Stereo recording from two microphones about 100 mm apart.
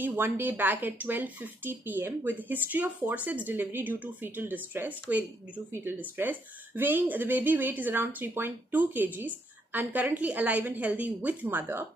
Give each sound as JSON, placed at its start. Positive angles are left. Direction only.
{"t": 0.0, "sound": "speech", "side_deg": -20}